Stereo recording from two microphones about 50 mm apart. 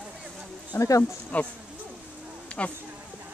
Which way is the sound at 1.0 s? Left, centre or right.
Left.